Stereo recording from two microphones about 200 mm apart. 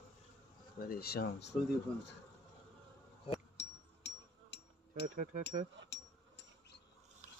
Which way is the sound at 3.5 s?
60° left (ahead or behind).